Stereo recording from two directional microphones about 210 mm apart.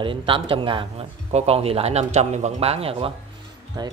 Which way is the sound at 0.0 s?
25° right (ahead or behind).